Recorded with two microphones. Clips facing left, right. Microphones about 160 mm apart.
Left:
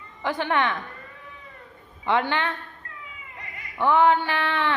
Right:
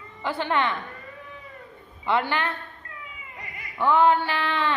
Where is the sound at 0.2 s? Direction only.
15° left (ahead or behind).